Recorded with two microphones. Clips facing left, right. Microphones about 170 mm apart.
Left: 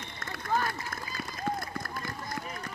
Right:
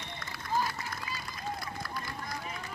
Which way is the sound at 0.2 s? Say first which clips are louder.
Left 2 dB; 55° left (ahead or behind).